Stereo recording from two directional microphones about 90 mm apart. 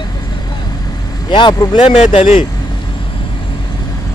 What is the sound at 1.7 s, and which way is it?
Speech, 90° left.